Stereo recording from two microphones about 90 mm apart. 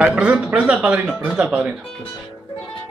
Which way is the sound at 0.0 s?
10° right (ahead or behind).